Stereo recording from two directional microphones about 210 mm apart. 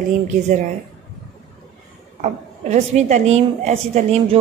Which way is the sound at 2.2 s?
35° right (ahead or behind).